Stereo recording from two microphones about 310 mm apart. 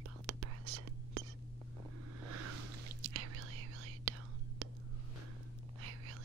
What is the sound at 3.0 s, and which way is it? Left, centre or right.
Whispering, right.